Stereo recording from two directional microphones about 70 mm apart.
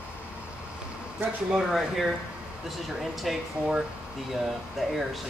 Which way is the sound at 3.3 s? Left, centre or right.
Centre.